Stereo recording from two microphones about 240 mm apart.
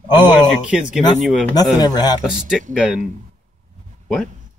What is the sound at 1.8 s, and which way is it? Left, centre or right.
Speech, centre.